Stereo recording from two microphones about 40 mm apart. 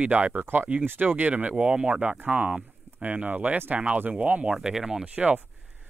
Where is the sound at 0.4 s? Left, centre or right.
Right.